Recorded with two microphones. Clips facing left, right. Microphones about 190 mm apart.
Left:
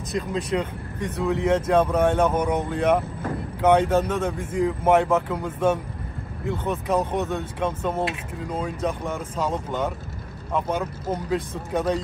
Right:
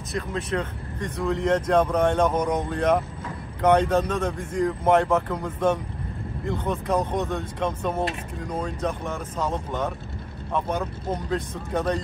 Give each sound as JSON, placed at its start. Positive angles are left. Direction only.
{"t": 0.1, "sound": "speech", "side_deg": 15}